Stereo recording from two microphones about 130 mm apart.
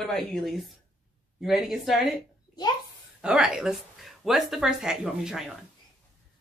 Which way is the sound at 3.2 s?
5° right (ahead or behind).